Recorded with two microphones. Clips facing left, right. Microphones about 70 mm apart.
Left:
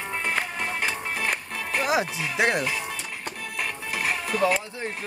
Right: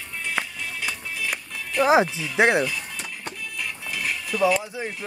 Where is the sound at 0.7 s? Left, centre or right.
Left.